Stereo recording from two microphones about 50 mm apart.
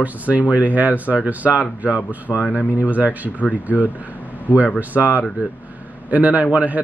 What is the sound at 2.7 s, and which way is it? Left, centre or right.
Speech, right.